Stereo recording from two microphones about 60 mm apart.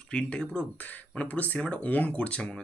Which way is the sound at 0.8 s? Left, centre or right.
Left.